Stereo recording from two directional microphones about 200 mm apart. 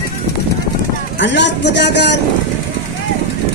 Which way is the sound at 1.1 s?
65° left (ahead or behind).